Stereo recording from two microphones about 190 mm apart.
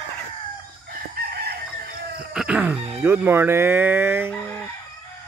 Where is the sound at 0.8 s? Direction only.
55° right (ahead or behind).